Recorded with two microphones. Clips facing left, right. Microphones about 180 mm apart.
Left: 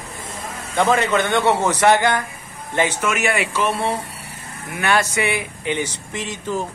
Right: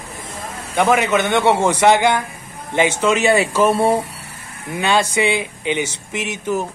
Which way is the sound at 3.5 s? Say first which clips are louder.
Right 6 dB; 45° right (ahead or behind).